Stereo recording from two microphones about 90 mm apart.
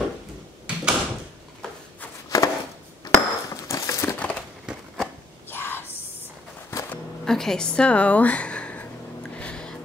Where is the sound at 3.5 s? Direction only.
35° left (ahead or behind).